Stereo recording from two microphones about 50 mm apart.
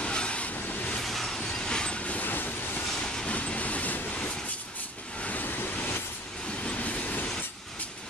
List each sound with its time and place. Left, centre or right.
0.0 s vehicle: left
1.0 s vehicle: centre
1.5 s train: centre
2.2 s vehicle: left
2.9 s train: centre
3.3 s vehicle: left
5.2 s waves: left
5.8 s vehicle: left
6.5 s train: left